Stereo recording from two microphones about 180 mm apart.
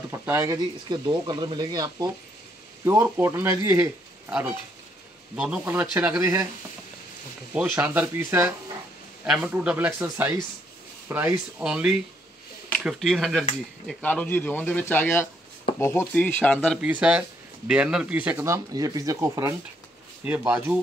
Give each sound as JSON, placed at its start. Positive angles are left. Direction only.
{"t": 0.1, "sound": "speech", "side_deg": -15}
{"t": 0.8, "sound": "speech", "side_deg": -25}
{"t": 7.5, "sound": "speech", "side_deg": -10}
{"t": 16.8, "sound": "speech", "side_deg": -5}